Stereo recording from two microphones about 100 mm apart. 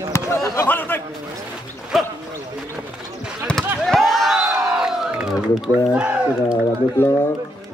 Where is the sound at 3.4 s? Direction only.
5° left (ahead or behind).